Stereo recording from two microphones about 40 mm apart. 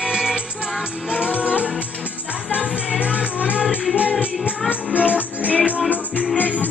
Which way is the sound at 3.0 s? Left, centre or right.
Right.